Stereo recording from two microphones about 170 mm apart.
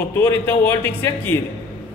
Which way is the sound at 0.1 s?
15° left (ahead or behind).